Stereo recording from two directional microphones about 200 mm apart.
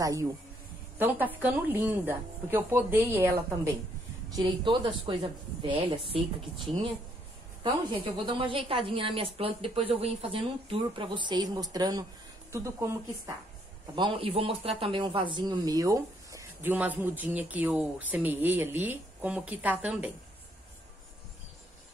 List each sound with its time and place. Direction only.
0.0 s speech: 15° right (ahead or behind)
4.4 s a woman's voice: 25° right (ahead or behind)
7.6 s a woman's voice: 25° right (ahead or behind)
13.9 s speech: 25° right (ahead or behind); by 20.1 s 5° right (ahead or behind)